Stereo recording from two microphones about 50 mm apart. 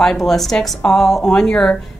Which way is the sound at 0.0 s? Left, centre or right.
Centre.